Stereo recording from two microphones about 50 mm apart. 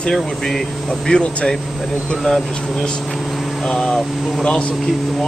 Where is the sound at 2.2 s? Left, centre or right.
Centre.